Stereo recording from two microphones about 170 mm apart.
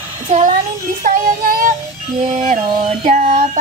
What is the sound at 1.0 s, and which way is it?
Music, 55° right (ahead or behind).